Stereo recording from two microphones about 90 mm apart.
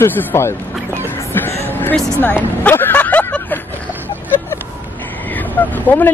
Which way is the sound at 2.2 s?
20° left (ahead or behind).